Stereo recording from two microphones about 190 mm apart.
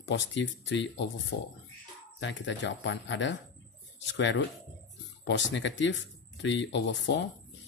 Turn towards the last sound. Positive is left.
turn(degrees=65)  # may be behind; listen again after turning